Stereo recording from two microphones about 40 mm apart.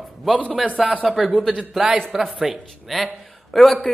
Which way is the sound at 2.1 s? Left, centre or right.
Centre.